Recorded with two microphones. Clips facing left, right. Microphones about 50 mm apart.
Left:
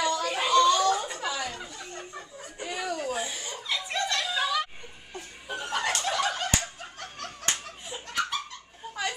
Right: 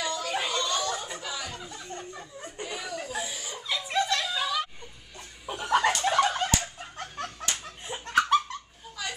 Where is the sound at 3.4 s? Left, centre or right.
Centre.